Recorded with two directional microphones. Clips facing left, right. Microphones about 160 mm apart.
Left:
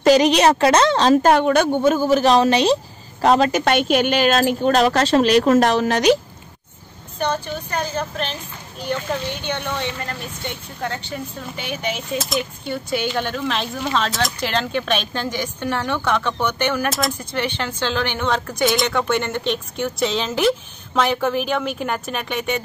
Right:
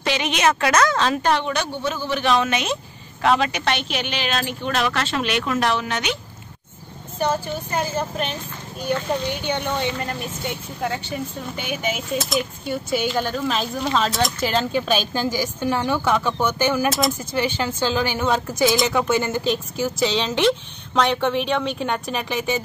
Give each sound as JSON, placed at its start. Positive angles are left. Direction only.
{"t": 0.0, "sound": "a woman's voice", "side_deg": 40}
{"t": 1.3, "sound": "a woman's voice", "side_deg": 50}
{"t": 7.2, "sound": "a woman's voice", "side_deg": -5}
{"t": 9.1, "sound": "a woman's voice", "side_deg": -15}